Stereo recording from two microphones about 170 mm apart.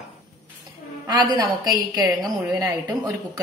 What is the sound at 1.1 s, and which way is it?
A woman's voice, 25° right (ahead or behind).